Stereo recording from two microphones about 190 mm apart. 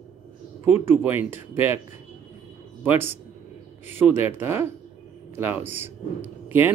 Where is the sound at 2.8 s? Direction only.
10° right (ahead or behind).